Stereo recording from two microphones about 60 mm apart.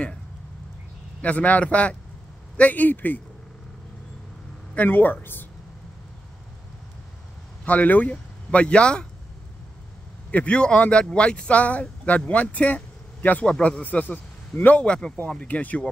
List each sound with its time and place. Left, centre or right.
1.2 s speech: left
4.7 s speech: left
7.6 s speech: left
10.3 s speech: centre